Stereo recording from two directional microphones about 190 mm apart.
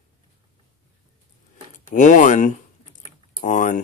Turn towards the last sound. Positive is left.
turn(degrees=40)  # may be behind; listen again after turning